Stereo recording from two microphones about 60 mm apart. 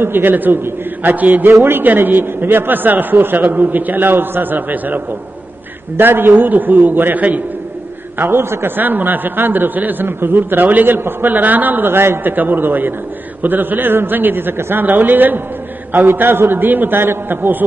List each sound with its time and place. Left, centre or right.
0.0 s a man's voice: right
8.2 s a man's voice: right